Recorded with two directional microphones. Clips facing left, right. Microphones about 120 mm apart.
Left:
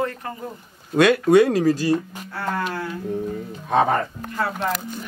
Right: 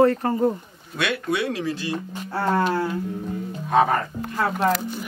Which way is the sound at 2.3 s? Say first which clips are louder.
Right 5 dB; 30° right (ahead or behind).